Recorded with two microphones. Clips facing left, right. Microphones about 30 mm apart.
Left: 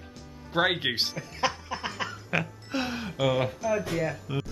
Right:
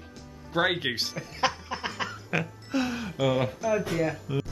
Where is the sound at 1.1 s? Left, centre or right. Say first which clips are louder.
Right 1 dB; centre.